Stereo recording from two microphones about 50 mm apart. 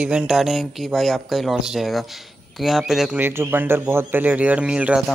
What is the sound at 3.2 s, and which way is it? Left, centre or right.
A man's voice, right.